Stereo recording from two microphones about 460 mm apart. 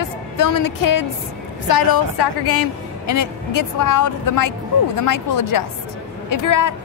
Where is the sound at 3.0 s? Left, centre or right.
Left.